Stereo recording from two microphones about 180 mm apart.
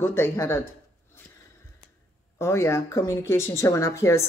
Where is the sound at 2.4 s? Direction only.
15° left (ahead or behind).